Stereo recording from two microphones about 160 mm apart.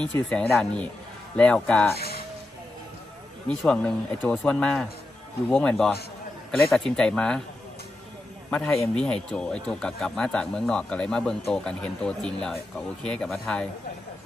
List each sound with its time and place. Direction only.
0.0 s speech: 10° left (ahead or behind)
2.0 s music: 70° left (ahead or behind)
3.4 s speech: 5° left (ahead or behind)
7.0 s speech: 5° left (ahead or behind)
8.5 s speech: 5° left (ahead or behind)